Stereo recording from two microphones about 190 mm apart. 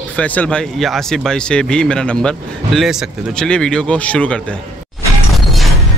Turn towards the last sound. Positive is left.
turn(degrees=0)  # may be behind; listen again after turning